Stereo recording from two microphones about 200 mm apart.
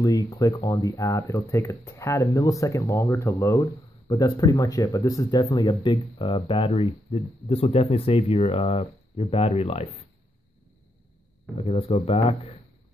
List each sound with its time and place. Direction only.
0.0 s speech: 20° left (ahead or behind)
11.5 s speech: 30° left (ahead or behind)